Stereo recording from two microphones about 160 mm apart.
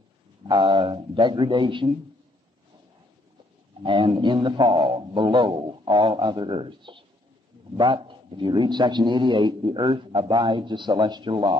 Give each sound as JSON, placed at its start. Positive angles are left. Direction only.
{"t": 0.5, "sound": "a man's voice", "side_deg": -30}
{"t": 3.8, "sound": "a man's voice", "side_deg": -30}